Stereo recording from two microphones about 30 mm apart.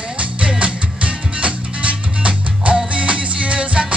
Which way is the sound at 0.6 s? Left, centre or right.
Right.